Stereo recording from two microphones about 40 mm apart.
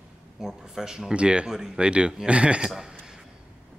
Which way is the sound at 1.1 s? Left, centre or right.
Right.